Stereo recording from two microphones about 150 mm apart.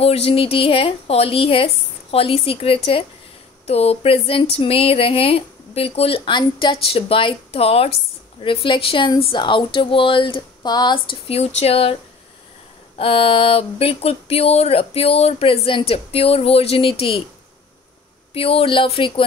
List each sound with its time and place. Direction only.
0.0 s speech: 40° left (ahead or behind)
18.3 s speech: 40° left (ahead or behind)